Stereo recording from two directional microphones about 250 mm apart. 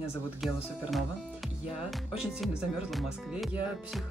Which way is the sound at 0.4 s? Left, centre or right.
Centre.